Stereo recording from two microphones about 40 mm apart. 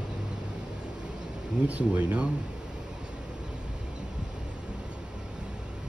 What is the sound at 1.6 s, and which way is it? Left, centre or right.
Speech, right.